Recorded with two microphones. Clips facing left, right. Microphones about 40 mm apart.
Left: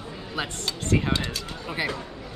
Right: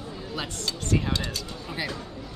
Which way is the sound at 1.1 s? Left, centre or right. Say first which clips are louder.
Left 2 dB; left.